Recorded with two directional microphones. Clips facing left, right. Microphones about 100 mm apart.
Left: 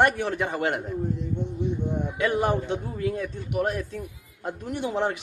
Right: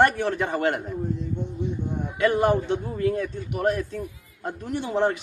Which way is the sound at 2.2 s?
15° left (ahead or behind).